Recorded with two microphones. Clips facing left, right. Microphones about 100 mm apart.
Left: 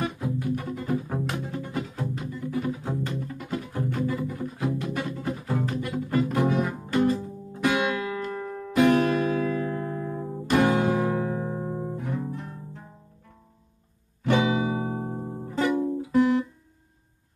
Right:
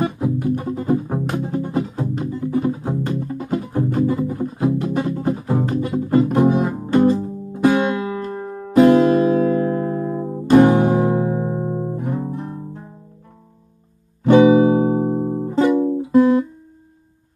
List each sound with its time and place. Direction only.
0.0 s music: 30° right (ahead or behind)
10.4 s music: 25° right (ahead or behind)
14.2 s music: 35° right (ahead or behind)
14.9 s music: 30° right (ahead or behind)